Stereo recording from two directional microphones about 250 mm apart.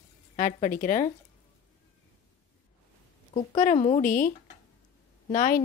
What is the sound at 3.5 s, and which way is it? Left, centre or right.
Speech, left.